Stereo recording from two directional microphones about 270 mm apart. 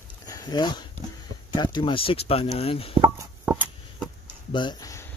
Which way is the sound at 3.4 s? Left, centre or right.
Centre.